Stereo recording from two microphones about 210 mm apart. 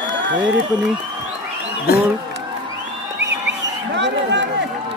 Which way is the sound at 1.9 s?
50° left (ahead or behind).